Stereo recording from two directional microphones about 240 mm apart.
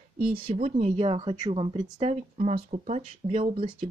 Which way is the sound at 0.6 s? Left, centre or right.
Right.